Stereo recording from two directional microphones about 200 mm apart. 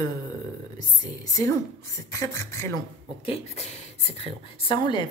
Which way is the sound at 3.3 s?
35° left (ahead or behind).